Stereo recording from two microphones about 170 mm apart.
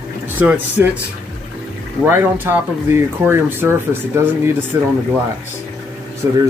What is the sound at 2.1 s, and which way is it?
Speech, 15° right (ahead or behind).